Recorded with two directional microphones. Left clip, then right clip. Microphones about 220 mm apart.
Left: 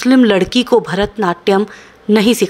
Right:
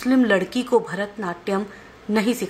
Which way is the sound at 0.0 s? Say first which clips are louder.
Left 8 dB; 40° left (ahead or behind).